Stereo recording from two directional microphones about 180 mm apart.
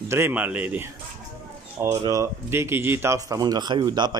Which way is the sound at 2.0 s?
15° right (ahead or behind).